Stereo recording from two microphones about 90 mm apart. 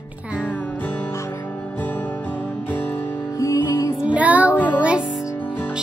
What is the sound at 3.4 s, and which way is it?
Music, 40° left (ahead or behind).